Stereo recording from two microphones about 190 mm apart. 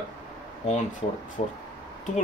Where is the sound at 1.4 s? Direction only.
40° left (ahead or behind).